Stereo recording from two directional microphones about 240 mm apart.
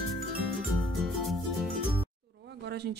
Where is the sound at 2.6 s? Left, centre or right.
Right.